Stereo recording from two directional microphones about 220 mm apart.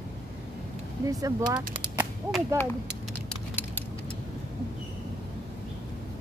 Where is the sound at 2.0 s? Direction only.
Centre (ahead or behind).